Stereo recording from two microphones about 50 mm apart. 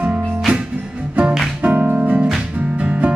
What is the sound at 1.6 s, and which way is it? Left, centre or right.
Music, right.